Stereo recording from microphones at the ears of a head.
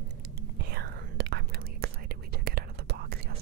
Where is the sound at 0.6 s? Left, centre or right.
Right.